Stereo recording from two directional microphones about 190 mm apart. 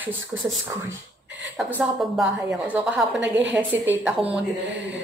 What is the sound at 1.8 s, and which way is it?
A woman's voice, centre (ahead or behind).